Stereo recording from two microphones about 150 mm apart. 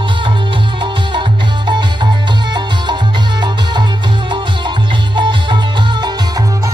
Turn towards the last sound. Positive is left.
turn(degrees=-30)  # may be behind; listen again after turning